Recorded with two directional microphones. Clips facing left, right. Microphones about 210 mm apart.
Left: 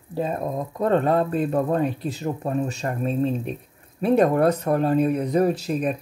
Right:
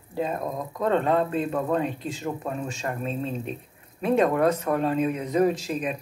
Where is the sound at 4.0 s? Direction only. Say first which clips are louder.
Left 3 dB; 35° left (ahead or behind).